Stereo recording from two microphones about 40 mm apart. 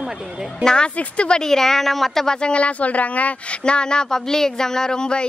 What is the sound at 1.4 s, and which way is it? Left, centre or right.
Speech, centre.